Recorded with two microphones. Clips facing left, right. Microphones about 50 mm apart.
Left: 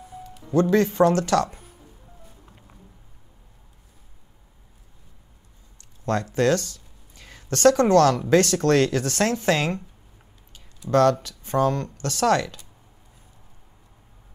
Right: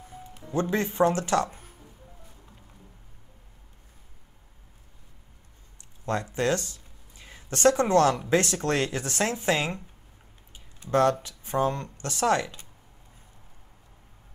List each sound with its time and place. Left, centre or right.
0.6 s speech: right
2.4 s a sound: centre
6.0 s speech: right